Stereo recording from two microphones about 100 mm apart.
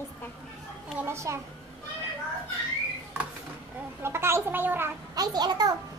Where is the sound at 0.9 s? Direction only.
25° right (ahead or behind).